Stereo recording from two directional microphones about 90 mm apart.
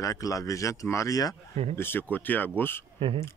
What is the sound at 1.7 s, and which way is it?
Speech, 25° left (ahead or behind).